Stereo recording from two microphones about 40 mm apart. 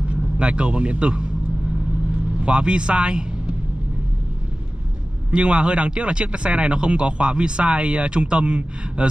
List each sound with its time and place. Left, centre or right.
0.1 s a man's voice: right
2.4 s speech: right
5.3 s speech: right